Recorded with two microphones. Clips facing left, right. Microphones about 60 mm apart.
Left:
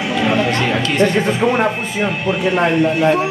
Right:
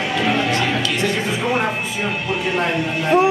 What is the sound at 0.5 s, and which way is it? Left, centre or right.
Music, left.